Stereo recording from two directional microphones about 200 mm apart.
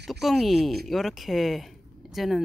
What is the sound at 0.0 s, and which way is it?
Speech, centre (ahead or behind).